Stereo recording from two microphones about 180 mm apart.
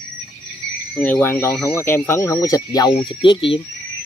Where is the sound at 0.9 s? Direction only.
10° left (ahead or behind).